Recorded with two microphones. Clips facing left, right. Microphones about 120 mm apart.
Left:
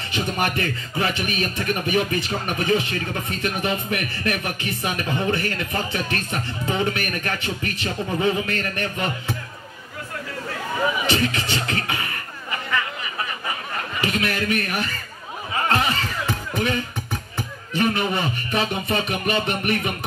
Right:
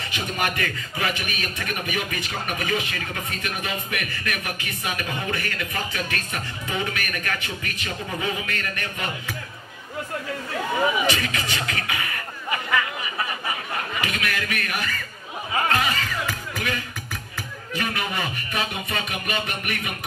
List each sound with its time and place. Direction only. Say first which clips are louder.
0.1 s speech: left 4 dB; 30° left (ahead or behind)
11.1 s speech: left 3 dB; 30° left (ahead or behind)
14.0 s speech: left 9 dB; 30° left (ahead or behind)
15.7 s music: left 2 dB; 30° left (ahead or behind)